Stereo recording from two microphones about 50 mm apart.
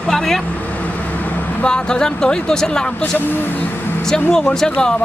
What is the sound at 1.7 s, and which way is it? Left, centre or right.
Speech, centre.